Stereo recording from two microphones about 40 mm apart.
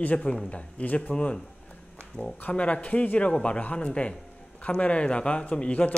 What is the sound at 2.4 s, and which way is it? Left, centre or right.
Speech, left.